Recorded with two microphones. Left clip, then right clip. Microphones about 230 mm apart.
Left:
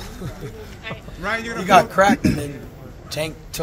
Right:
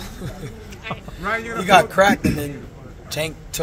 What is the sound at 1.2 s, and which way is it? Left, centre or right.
Speech, left.